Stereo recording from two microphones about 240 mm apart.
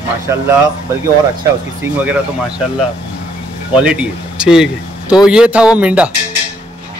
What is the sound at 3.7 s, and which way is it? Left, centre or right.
Speech, centre.